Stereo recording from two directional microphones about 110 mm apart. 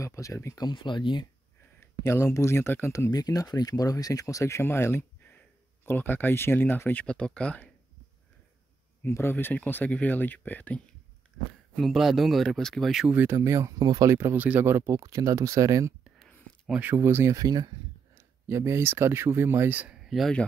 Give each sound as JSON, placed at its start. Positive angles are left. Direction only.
{"t": 0.0, "sound": "speech", "side_deg": 30}
{"t": 0.7, "sound": "speech", "side_deg": 45}
{"t": 2.0, "sound": "speech", "side_deg": 25}
{"t": 3.1, "sound": "speech", "side_deg": 35}
{"t": 9.0, "sound": "speech", "side_deg": 20}
{"t": 11.7, "sound": "speech", "side_deg": 0}
{"t": 13.1, "sound": "speech", "side_deg": -20}
{"t": 16.0, "sound": "whispering", "side_deg": -5}
{"t": 16.8, "sound": "speech", "side_deg": -20}
{"t": 17.4, "sound": "speech", "side_deg": -40}
{"t": 18.1, "sound": "speech", "side_deg": -25}
{"t": 20.1, "sound": "speech", "side_deg": 0}